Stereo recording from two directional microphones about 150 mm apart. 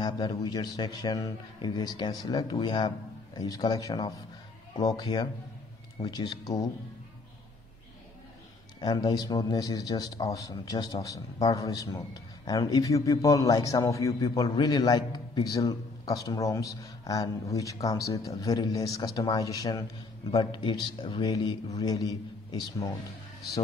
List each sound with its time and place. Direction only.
0.0 s a man's voice: 25° left (ahead or behind)
8.8 s a man's voice: 25° left (ahead or behind)